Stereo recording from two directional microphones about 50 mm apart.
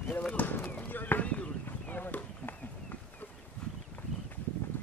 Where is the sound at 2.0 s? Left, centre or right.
Left.